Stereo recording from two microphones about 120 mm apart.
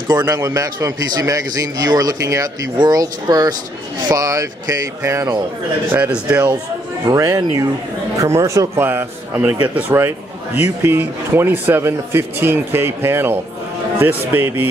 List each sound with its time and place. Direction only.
0.3 s a man's voice: 30° right (ahead or behind)
5.9 s speech: 15° right (ahead or behind)
7.1 s a man's voice: 30° right (ahead or behind)